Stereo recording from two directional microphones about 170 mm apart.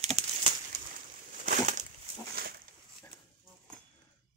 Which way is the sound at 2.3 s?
65° right (ahead or behind).